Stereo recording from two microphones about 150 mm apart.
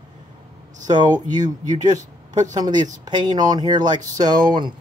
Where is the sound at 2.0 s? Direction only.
55° right (ahead or behind).